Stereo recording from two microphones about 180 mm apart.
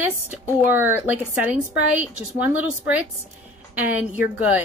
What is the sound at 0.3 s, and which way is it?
A woman's voice, 10° right (ahead or behind).